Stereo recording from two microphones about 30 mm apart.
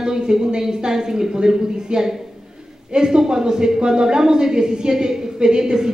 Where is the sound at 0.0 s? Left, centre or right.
Right.